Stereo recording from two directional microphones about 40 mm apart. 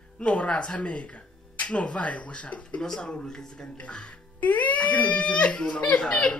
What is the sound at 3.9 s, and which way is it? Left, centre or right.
Speech, left.